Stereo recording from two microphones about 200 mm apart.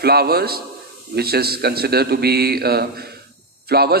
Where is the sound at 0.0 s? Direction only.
50° right (ahead or behind).